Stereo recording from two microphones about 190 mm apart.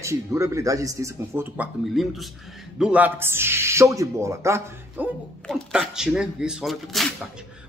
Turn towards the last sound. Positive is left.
turn(degrees=0)  # may be behind; listen again after turning